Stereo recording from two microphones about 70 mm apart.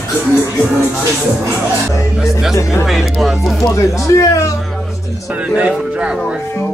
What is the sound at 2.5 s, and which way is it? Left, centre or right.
Speech, left.